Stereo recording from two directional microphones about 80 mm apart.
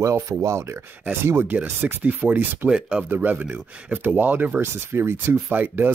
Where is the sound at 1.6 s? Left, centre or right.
Right.